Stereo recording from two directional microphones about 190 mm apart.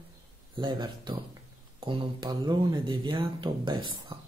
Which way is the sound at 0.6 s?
25° right (ahead or behind).